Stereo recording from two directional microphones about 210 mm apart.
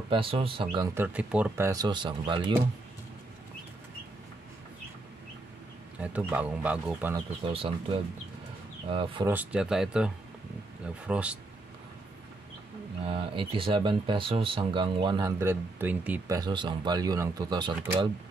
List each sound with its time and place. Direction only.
0.1 s speech: 25° right (ahead or behind)
0.9 s speech: 5° right (ahead or behind); by 2.5 s 20° right (ahead or behind)
5.9 s speech: 5° right (ahead or behind)
7.4 s speech: 25° right (ahead or behind)
8.8 s speech: 25° right (ahead or behind)
9.3 s speech: 5° right (ahead or behind)
13.0 s speech: 25° right (ahead or behind)